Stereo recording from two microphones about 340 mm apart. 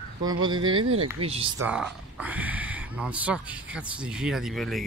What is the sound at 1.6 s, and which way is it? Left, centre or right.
Speech, centre.